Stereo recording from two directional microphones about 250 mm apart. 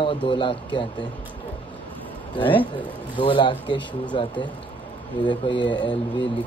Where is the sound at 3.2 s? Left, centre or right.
Centre.